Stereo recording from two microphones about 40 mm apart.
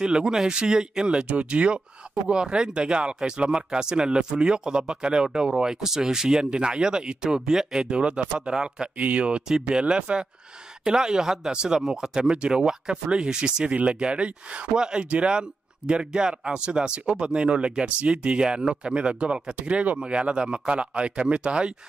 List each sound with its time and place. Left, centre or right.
0.0 s speech: right
8.9 s speech: right
9.5 s speech: right
12.2 s speech: right
13.7 s speech: right